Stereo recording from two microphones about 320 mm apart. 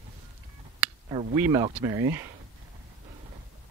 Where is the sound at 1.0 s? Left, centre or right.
Centre.